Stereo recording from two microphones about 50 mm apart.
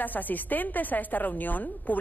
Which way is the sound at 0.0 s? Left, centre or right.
Left.